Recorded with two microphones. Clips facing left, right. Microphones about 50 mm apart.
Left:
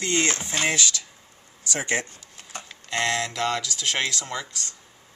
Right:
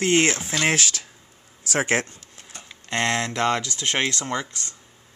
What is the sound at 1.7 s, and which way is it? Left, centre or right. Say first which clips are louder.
Speech: right 4 dB; right.